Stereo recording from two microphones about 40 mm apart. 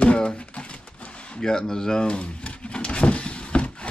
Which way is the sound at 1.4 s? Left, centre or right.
Centre.